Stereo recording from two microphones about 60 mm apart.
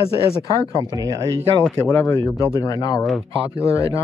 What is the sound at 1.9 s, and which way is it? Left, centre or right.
Speech, left.